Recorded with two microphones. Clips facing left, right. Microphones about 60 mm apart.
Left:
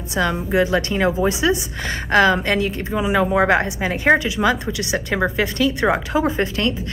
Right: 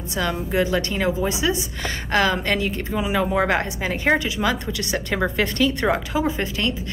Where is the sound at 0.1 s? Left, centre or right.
Left.